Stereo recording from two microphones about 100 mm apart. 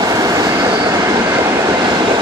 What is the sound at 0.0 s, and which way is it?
Train, 40° right (ahead or behind).